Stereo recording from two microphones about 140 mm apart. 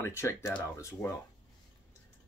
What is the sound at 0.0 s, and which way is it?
Speech, 20° left (ahead or behind).